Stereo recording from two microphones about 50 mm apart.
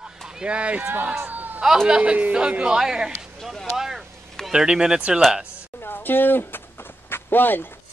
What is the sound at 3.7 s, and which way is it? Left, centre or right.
Vehicle, centre.